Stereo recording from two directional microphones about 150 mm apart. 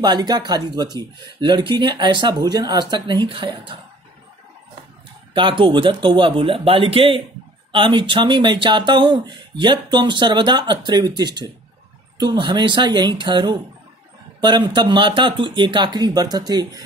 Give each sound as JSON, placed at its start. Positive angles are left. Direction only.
{"t": 0.0, "sound": "speech", "side_deg": -30}
{"t": 5.3, "sound": "speech", "side_deg": -35}